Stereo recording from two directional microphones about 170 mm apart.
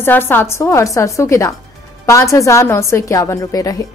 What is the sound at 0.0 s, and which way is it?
A woman's voice, 10° left (ahead or behind).